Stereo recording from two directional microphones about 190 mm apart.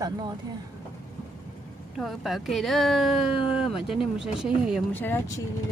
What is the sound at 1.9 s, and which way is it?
Speech, centre (ahead or behind).